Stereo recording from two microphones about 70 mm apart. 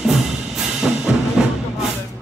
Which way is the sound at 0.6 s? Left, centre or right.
Centre.